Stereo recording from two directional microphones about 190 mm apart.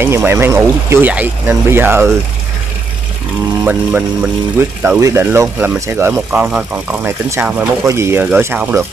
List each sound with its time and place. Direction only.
0.0 s speech: 10° right (ahead or behind)
3.6 s speech: 10° right (ahead or behind)